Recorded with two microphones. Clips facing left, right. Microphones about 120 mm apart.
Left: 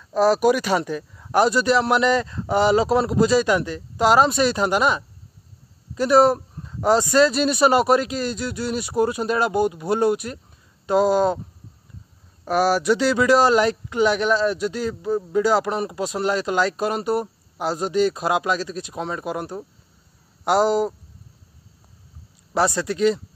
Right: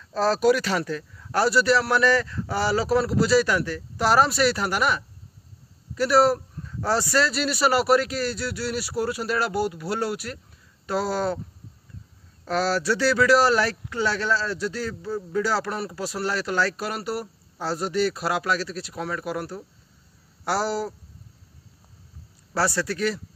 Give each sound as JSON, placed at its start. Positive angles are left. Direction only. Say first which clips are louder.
{"t": 0.1, "sound": "speech", "louder": "left 3 dB", "side_deg": 15}
{"t": 12.4, "sound": "speech", "louder": "left 5 dB", "side_deg": 15}
{"t": 22.5, "sound": "speech", "louder": "left 4 dB", "side_deg": 20}